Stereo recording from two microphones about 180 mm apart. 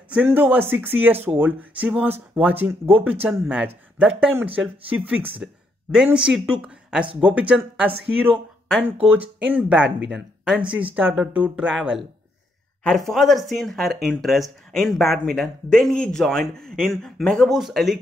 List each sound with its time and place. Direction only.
0.1 s a man's voice: 10° right (ahead or behind)
9.8 s speech: 70° right (ahead or behind)
10.1 s a man's voice: 5° right (ahead or behind)